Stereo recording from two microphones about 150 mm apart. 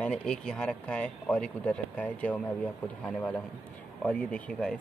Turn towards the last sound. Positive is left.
turn(degrees=5)  # may be behind; listen again after turning